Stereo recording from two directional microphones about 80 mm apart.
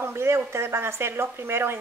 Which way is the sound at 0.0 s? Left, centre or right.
Right.